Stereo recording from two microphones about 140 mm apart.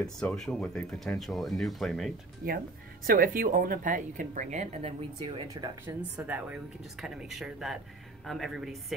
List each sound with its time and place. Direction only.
0.0 s speech: 5° left (ahead or behind)
2.4 s speech: 90° right; by 4.9 s 55° right (ahead or behind)
5.2 s speech: 30° right (ahead or behind)
5.9 s speech: 10° right (ahead or behind)